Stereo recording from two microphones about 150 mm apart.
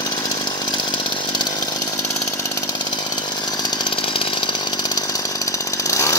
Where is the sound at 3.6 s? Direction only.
35° left (ahead or behind).